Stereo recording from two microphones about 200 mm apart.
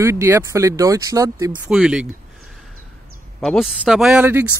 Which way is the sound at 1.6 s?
5° right (ahead or behind).